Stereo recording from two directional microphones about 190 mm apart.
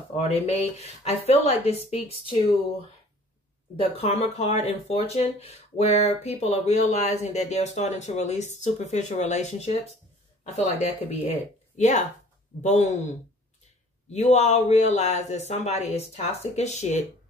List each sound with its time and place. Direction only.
0.1 s speech: 30° left (ahead or behind)
3.9 s speech: 30° left (ahead or behind)
14.1 s speech: 35° left (ahead or behind)